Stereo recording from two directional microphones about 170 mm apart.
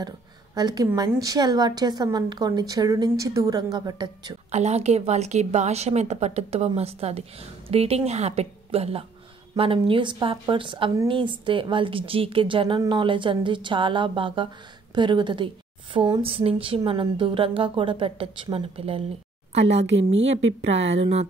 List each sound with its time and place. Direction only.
0.6 s a woman's voice: 25° right (ahead or behind)
4.5 s a woman's voice: 40° right (ahead or behind)
20.7 s a woman's voice: 35° right (ahead or behind)